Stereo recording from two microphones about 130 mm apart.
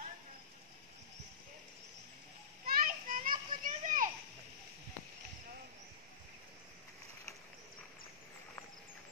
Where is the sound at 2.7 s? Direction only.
90° right.